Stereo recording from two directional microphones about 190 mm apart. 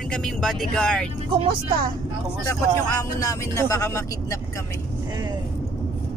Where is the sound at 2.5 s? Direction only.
20° left (ahead or behind).